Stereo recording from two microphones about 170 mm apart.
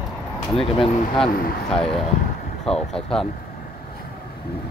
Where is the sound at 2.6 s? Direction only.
5° left (ahead or behind).